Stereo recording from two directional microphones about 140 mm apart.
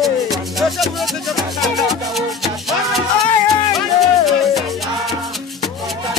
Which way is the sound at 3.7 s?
Centre (ahead or behind).